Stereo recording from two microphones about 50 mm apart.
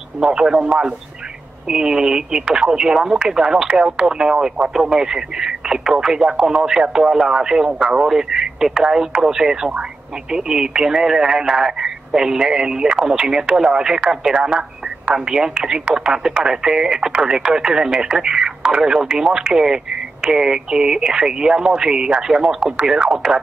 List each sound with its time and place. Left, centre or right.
0.2 s speech: centre